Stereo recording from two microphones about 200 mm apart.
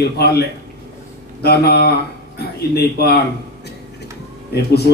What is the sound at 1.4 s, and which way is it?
A man's voice, 50° left (ahead or behind).